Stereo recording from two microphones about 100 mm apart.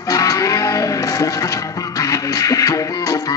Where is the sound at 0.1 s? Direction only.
35° left (ahead or behind).